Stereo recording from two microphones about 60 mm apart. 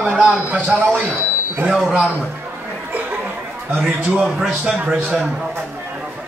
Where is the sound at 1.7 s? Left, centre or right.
Centre.